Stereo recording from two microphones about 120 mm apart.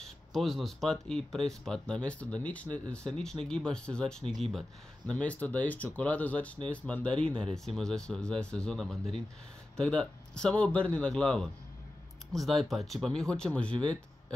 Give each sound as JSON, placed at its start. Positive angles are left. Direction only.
{"t": 0.0, "sound": "speech", "side_deg": 0}
{"t": 13.7, "sound": "speech", "side_deg": -40}